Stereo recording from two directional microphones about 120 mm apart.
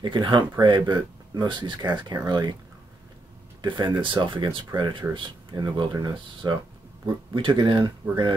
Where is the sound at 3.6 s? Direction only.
40° right (ahead or behind).